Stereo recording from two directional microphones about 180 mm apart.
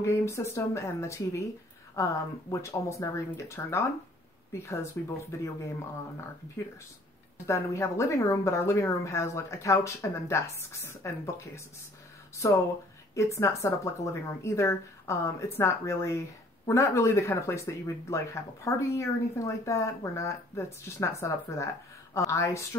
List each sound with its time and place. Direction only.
0.0 s speech: 15° left (ahead or behind)
7.4 s speech: 15° left (ahead or behind)
13.1 s speech: 15° left (ahead or behind)